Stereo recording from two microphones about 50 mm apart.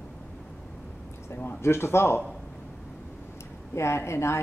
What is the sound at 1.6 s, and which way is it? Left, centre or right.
Speech, left.